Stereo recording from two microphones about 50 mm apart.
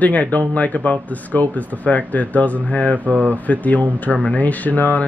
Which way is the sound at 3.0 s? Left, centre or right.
Right.